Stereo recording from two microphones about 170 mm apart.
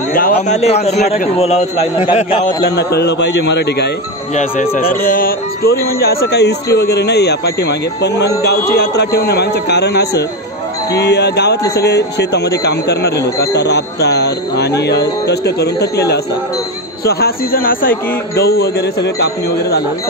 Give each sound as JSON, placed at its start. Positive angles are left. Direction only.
{"t": 0.1, "sound": "speech", "side_deg": 55}
{"t": 0.6, "sound": "a man's voice", "side_deg": 40}
{"t": 2.4, "sound": "a man's voice", "side_deg": 80}
{"t": 4.4, "sound": "a man's voice", "side_deg": 50}